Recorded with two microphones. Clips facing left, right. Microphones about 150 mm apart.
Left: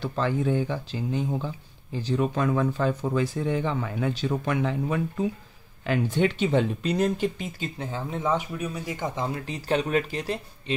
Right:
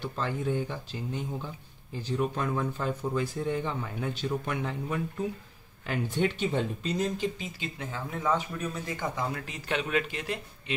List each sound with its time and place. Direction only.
0.0 s speech: 90° left; by 7.4 s 60° left (ahead or behind)
7.6 s speech: 30° left (ahead or behind)
8.5 s speech: 15° left (ahead or behind)
9.1 s speech: 30° left (ahead or behind)